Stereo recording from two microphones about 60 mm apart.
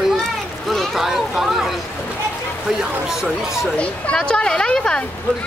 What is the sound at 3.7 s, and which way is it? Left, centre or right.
A woman's voice, centre.